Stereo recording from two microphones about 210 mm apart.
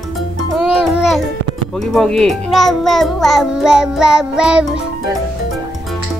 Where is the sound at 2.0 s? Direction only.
Centre (ahead or behind).